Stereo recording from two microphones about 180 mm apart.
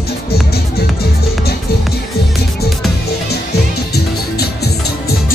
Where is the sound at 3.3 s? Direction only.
65° left (ahead or behind).